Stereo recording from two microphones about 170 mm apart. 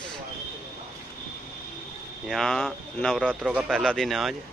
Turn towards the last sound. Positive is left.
turn(degrees=0)  # may be behind; listen again after turning